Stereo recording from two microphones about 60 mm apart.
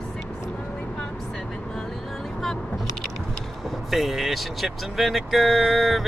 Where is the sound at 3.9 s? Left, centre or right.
Centre.